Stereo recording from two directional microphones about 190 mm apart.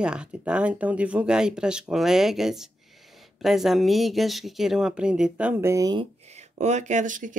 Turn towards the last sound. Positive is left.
turn(degrees=-45)  # may be behind; listen again after turning